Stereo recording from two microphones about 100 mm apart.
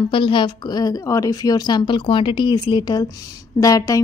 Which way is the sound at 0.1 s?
55° left (ahead or behind).